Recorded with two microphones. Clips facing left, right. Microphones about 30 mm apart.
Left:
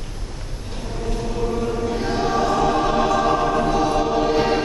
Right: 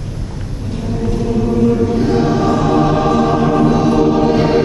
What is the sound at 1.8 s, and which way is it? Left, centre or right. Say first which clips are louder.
Choir: right 8 dB; centre.